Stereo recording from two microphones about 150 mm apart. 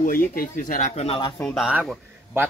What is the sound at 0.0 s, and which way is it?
Speech, 70° left (ahead or behind).